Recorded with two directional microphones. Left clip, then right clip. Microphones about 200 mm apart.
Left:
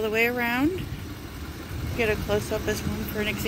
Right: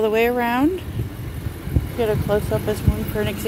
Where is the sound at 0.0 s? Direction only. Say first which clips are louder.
Right 6 dB; 35° right (ahead or behind).